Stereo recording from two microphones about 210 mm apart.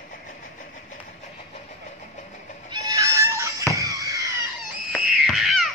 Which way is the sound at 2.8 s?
15° right (ahead or behind).